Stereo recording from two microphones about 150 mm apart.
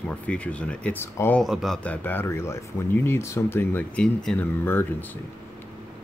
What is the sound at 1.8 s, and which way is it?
Speech, 15° left (ahead or behind).